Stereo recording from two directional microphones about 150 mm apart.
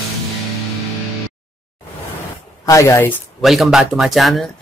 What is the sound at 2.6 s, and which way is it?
Speech, 20° left (ahead or behind).